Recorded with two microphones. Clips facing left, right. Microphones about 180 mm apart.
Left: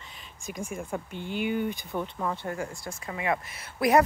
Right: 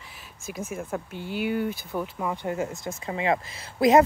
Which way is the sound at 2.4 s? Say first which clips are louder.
Right 5 dB; 20° right (ahead or behind).